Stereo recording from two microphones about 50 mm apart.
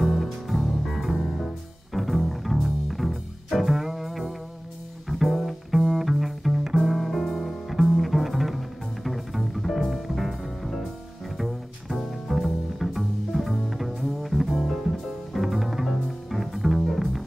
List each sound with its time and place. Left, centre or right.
0.0 s music: centre
5.2 s double bass: centre
6.8 s music: centre
11.3 s double bass: centre
14.7 s music: centre